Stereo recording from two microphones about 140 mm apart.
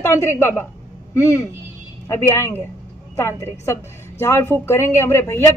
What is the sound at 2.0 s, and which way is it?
A woman's voice, 20° left (ahead or behind).